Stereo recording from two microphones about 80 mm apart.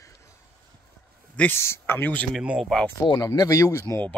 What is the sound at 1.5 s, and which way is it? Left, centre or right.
Speech, left.